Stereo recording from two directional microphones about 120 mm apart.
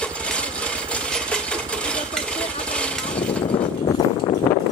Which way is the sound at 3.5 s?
50° left (ahead or behind).